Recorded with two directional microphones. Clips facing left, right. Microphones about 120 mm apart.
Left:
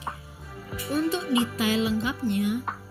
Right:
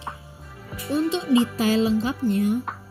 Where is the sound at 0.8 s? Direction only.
25° right (ahead or behind).